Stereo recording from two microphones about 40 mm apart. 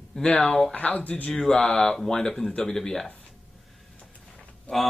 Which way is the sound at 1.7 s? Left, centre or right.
Left.